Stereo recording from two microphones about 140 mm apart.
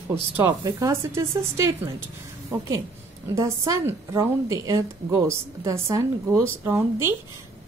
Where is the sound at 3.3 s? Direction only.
20° right (ahead or behind).